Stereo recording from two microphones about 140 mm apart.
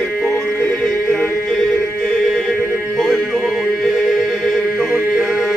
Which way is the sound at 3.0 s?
Centre (ahead or behind).